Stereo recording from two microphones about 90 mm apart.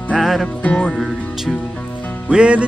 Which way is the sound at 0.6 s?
15° left (ahead or behind).